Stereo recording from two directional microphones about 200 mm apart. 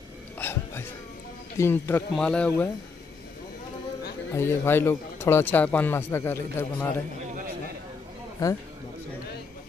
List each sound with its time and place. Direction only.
0.4 s a sound: 10° left (ahead or behind)
1.6 s speech: 10° left (ahead or behind)
4.4 s speech: 10° left (ahead or behind)
8.4 s speech: 15° left (ahead or behind)